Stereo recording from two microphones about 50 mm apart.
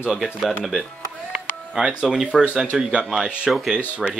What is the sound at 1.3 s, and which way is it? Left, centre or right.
Music, centre.